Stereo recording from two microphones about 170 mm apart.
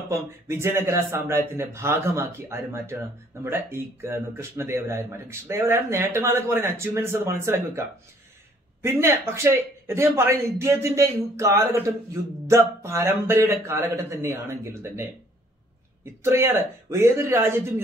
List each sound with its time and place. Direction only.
0.1 s a man's voice: 15° right (ahead or behind)
8.8 s a man's voice: 15° right (ahead or behind)
16.2 s a man's voice: 15° right (ahead or behind)